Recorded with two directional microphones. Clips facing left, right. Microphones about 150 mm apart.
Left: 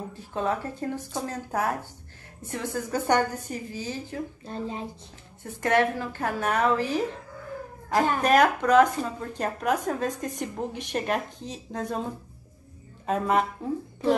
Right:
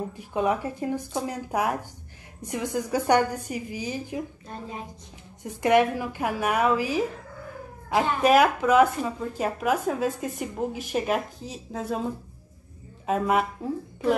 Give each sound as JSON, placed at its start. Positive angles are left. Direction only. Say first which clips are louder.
{"t": 0.1, "sound": "speech", "louder": "right 2 dB", "side_deg": -15}
{"t": 4.5, "sound": "a woman's voice", "louder": "left 4 dB", "side_deg": 30}
{"t": 5.4, "sound": "speech", "louder": "right 3 dB", "side_deg": -15}
{"t": 8.2, "sound": "speech", "louder": "right 3 dB", "side_deg": -5}
{"t": 13.0, "sound": "a man's voice", "louder": "right 1 dB", "side_deg": -5}